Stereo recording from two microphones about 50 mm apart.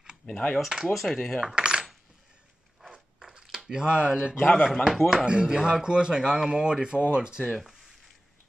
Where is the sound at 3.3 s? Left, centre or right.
Centre.